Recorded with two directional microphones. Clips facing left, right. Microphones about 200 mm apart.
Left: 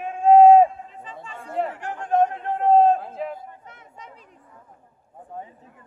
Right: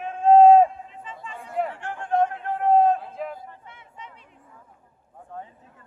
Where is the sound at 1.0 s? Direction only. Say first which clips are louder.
Even; 35° left (ahead or behind).